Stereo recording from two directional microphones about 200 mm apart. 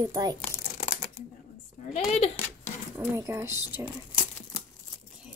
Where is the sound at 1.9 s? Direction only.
30° left (ahead or behind).